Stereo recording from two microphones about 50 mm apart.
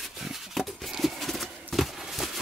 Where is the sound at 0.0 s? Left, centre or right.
Centre.